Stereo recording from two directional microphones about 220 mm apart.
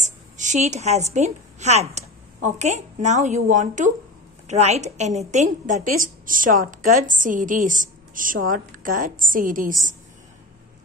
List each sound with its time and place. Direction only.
0.0 s a woman's voice: 35° right (ahead or behind)